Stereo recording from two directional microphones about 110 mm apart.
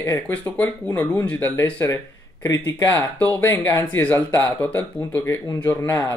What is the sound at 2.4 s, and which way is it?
Speech, 30° left (ahead or behind).